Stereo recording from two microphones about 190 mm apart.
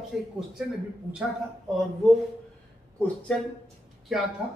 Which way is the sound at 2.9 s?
5° left (ahead or behind).